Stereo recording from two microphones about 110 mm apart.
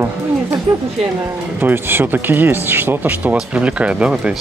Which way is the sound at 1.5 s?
20° right (ahead or behind).